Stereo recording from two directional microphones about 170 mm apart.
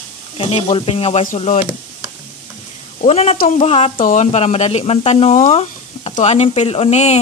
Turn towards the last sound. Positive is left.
turn(degrees=40)  # may be behind; listen again after turning